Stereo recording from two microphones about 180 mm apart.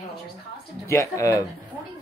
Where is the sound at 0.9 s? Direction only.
15° left (ahead or behind).